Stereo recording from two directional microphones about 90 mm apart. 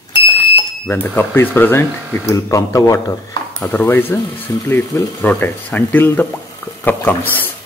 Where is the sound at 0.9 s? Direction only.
25° left (ahead or behind); by 3.1 s 40° left (ahead or behind).